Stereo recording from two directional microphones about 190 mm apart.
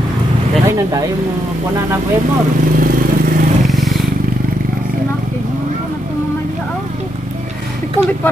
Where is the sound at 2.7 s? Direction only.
45° right (ahead or behind).